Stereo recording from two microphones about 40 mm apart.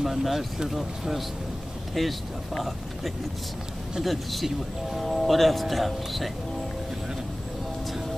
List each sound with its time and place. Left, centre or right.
0.0 s speech: centre